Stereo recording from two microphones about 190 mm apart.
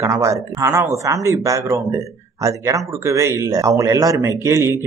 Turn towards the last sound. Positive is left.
turn(degrees=-15)  # may be behind; listen again after turning